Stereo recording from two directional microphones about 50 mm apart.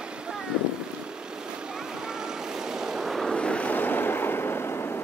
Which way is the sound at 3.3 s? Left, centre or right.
Left.